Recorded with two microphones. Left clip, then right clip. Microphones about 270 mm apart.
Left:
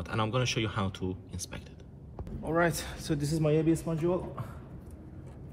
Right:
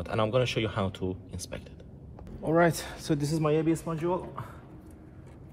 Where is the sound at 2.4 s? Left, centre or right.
Right; by 4.4 s centre.